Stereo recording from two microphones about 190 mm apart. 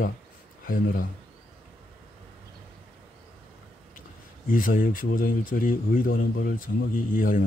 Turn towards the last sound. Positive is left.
turn(degrees=45)  # may be behind; listen again after turning